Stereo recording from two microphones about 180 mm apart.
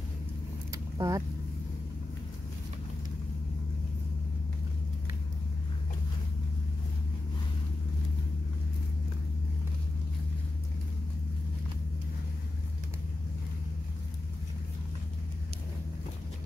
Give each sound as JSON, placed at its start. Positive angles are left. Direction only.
{"t": 0.7, "sound": "vehicle", "side_deg": -20}